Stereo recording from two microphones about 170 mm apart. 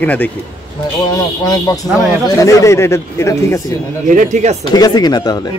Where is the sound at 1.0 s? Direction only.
20° left (ahead or behind).